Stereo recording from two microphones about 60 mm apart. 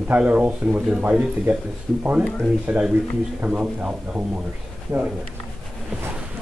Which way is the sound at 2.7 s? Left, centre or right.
Right.